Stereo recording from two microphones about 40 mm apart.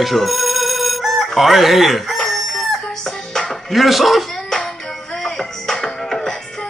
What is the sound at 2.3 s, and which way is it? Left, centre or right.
Chicken, centre.